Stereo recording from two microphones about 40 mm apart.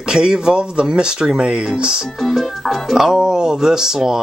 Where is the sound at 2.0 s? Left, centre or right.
Centre.